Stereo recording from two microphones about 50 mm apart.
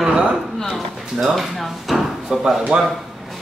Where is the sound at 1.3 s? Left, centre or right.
Centre.